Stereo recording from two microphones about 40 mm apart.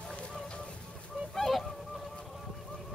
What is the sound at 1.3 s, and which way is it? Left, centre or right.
Fowl, centre.